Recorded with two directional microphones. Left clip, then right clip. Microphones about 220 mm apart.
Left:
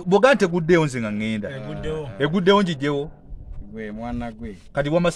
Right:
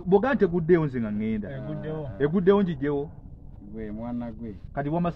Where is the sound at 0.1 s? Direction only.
55° left (ahead or behind).